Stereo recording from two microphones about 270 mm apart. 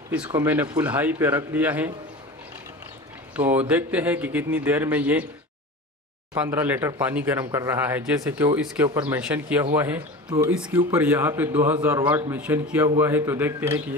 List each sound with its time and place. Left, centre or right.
0.1 s speech: centre
3.3 s a man's voice: centre
6.3 s speech: centre